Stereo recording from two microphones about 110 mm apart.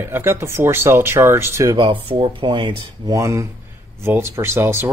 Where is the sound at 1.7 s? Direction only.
50° right (ahead or behind).